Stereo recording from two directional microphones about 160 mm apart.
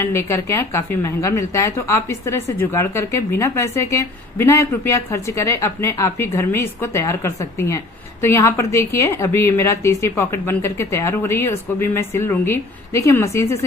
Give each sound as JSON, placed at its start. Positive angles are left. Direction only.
{"t": 0.0, "sound": "a woman's voice", "side_deg": 15}